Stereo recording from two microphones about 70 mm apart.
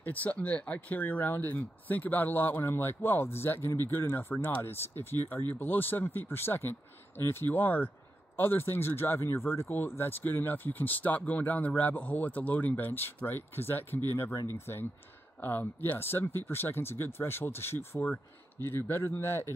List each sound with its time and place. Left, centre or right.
0.0 s speech: left